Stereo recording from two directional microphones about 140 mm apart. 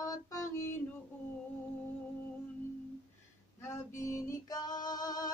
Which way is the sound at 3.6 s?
20° left (ahead or behind).